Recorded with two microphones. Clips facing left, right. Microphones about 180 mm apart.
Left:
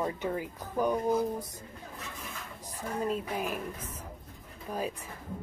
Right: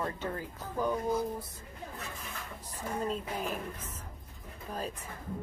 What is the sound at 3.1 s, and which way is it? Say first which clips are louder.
Speech: left 2 dB; 10° left (ahead or behind).